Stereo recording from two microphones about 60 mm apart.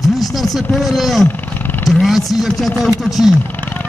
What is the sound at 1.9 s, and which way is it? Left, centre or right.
Speech, left.